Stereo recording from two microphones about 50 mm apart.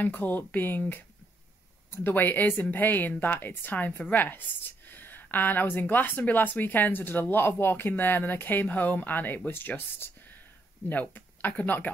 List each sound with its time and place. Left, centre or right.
0.0 s a woman's voice: left
10.9 s a woman's voice: left